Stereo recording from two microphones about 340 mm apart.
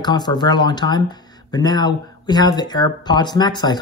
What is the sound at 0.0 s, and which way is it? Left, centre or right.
Speech, centre.